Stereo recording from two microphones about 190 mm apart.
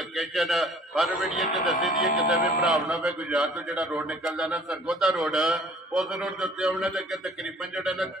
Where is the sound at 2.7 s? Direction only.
Centre (ahead or behind).